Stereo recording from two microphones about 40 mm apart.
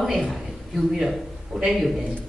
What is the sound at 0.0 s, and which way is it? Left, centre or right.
Speech, centre.